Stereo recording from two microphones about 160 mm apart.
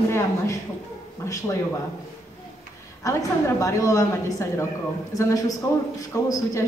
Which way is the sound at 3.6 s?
20° left (ahead or behind).